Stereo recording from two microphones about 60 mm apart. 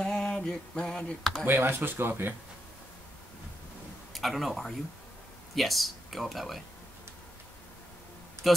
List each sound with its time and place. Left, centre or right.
0.0 s a sound: centre
1.4 s speech: right
4.1 s speech: centre
8.4 s a man's voice: centre